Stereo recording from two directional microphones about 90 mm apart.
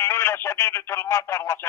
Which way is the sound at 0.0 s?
30° left (ahead or behind).